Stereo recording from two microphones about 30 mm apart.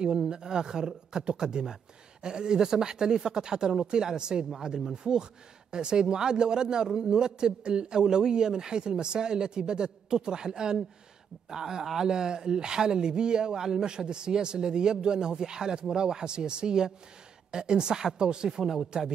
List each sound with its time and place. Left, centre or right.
0.0 s a man's voice: right
4.6 s speech: centre
5.1 s a man's voice: right
18.6 s speech: centre